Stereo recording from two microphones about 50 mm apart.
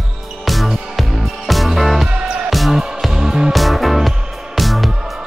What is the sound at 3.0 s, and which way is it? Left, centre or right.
Music, centre.